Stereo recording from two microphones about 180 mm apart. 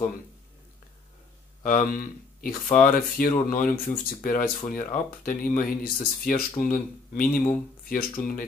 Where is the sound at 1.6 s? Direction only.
50° left (ahead or behind).